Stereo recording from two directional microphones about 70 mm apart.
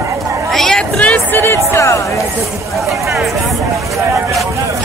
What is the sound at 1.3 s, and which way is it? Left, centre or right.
Music, left.